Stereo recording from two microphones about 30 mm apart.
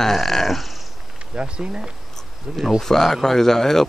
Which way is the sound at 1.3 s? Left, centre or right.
Right.